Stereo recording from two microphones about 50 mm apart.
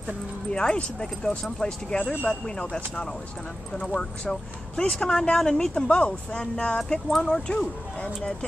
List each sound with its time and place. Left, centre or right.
0.5 s speech: centre
5.9 s speech: left
6.8 s speech: centre